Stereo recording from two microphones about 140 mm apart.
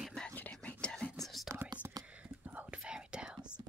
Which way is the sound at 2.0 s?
10° right (ahead or behind).